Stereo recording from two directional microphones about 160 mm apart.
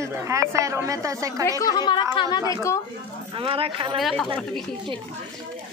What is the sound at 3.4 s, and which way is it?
Speech, 35° right (ahead or behind).